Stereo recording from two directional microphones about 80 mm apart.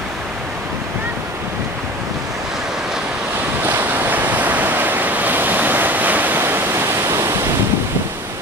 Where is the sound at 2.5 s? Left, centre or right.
Centre.